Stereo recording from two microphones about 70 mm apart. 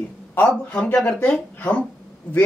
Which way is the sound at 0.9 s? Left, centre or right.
Centre.